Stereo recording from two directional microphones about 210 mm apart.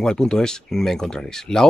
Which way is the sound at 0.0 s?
5° left (ahead or behind).